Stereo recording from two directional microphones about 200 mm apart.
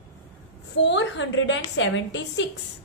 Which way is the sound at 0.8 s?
65° left (ahead or behind).